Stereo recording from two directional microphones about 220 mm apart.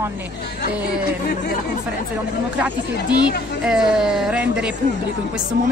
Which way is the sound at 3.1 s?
20° left (ahead or behind).